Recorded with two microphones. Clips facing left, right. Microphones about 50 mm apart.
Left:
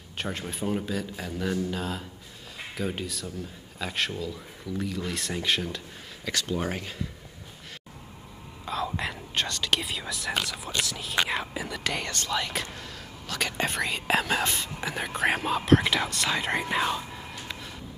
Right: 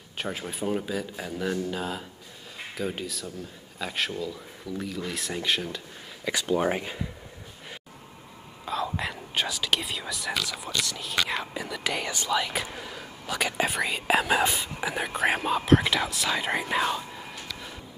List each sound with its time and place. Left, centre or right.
0.2 s speech: centre
6.2 s speech: centre
8.6 s whispering: centre
10.9 s speech: centre